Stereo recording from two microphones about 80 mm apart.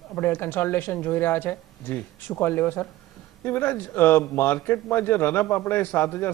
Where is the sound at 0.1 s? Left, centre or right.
Left.